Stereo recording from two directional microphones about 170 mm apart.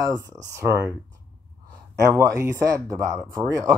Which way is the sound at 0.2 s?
20° right (ahead or behind).